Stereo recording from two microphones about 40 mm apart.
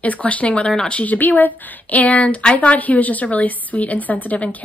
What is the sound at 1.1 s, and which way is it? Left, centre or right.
A woman's voice, left.